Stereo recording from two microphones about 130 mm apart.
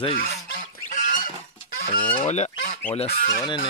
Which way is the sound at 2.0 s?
40° left (ahead or behind).